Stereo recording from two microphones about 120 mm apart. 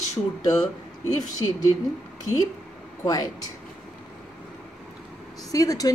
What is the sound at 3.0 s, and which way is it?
Speech, 35° left (ahead or behind).